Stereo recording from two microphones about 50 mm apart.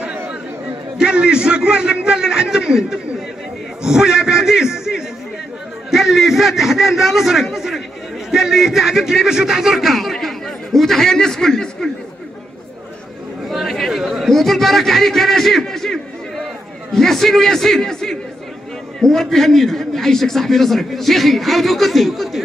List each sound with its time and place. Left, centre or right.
0.0 s a man's voice: right; by 11.9 s centre
13.5 s chatter: centre
16.9 s a man's voice: centre